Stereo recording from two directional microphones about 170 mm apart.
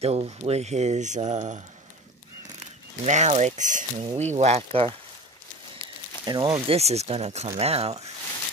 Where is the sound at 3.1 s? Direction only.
45° right (ahead or behind).